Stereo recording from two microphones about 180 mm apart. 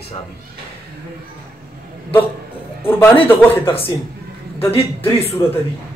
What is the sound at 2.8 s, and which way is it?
Speech, 10° left (ahead or behind).